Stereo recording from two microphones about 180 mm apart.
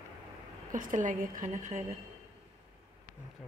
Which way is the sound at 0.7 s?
45° right (ahead or behind).